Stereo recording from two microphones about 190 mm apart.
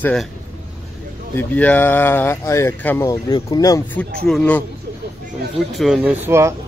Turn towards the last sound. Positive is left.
turn(degrees=-15)  # may be behind; listen again after turning